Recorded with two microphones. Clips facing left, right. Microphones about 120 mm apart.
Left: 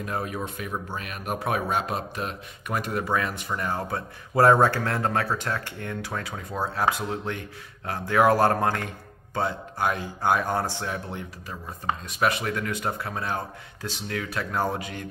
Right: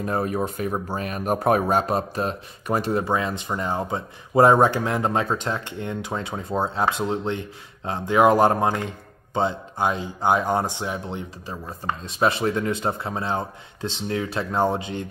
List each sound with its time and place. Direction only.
0.0 s speech: 40° right (ahead or behind)